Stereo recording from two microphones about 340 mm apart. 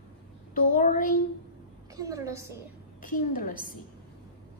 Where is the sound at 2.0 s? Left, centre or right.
Centre.